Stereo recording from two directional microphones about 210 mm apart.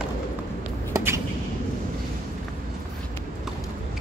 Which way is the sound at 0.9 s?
15° right (ahead or behind).